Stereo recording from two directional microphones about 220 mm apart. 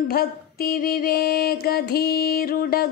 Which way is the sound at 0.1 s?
45° left (ahead or behind).